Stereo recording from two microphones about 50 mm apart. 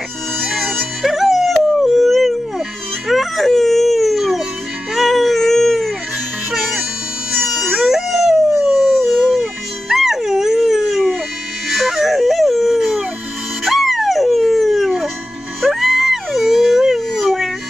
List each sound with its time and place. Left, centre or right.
0.4 s music: centre
3.1 s baby cry: centre
6.5 s music: centre
7.2 s dog: centre
13.7 s music: centre
15.6 s dog: centre